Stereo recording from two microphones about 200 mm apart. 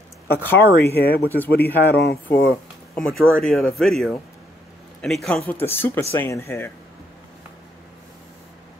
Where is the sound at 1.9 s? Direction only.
55° left (ahead or behind).